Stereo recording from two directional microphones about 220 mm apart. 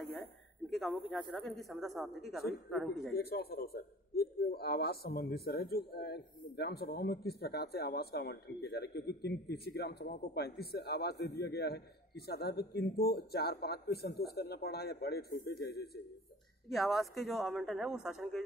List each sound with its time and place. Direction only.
0.7 s a man's voice: centre (ahead or behind)
3.1 s a man's voice: 45° left (ahead or behind)
16.7 s a man's voice: centre (ahead or behind)